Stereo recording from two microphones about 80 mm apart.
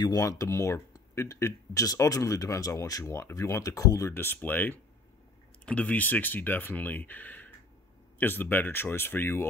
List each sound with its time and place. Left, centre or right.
0.1 s speech: left
3.1 s speech: left
4.1 s speech: left